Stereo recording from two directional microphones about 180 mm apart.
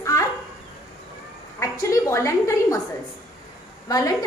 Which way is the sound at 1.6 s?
15° left (ahead or behind).